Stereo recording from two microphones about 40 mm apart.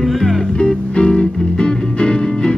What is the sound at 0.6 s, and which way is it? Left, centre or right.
Music, left.